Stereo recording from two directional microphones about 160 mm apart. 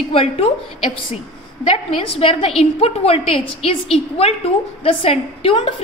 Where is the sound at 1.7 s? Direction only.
35° left (ahead or behind).